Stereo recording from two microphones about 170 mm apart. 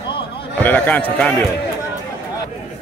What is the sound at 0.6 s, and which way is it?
Speech, 10° left (ahead or behind).